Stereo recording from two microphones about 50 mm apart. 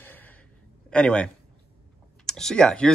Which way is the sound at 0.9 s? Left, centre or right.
Left.